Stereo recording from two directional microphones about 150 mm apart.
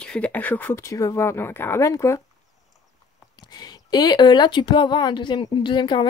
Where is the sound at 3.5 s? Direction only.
25° left (ahead or behind).